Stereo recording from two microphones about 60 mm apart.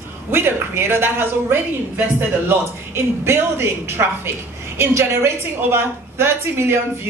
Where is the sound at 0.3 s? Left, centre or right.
Right.